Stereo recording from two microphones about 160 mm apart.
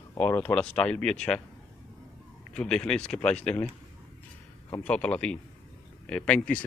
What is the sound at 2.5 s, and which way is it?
Speech, 5° left (ahead or behind).